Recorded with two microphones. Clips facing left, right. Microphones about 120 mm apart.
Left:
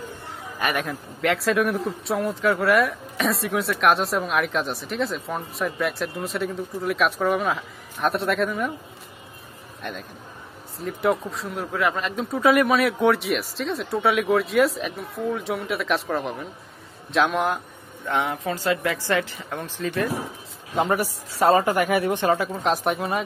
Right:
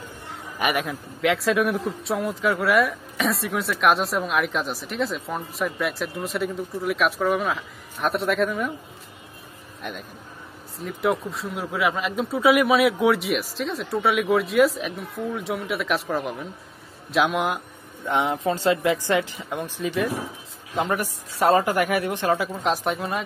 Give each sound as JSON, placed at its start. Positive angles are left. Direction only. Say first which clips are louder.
{"t": 0.7, "sound": "speech", "louder": "right 1 dB", "side_deg": 0}
{"t": 9.8, "sound": "a man's voice", "louder": "left 1 dB", "side_deg": 0}
{"t": 18.0, "sound": "speech", "louder": "right 2 dB", "side_deg": -20}
{"t": 20.7, "sound": "speech", "louder": "left 2 dB", "side_deg": 5}